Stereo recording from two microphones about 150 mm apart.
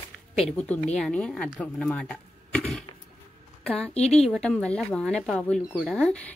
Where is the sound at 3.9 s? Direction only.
45° left (ahead or behind).